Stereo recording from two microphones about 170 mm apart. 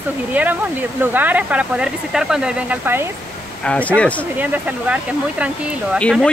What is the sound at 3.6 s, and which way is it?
Speech, 5° left (ahead or behind).